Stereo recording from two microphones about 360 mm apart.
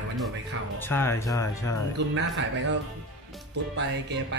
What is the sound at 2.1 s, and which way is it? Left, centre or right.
Speech, right.